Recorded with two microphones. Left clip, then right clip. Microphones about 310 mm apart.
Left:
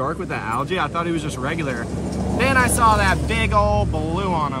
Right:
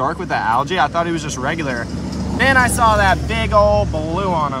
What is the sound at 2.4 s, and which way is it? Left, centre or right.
Speech, centre.